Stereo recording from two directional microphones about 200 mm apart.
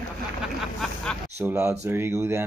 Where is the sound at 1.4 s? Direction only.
10° right (ahead or behind).